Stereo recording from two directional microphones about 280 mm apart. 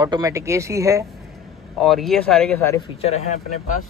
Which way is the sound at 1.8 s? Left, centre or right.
Centre.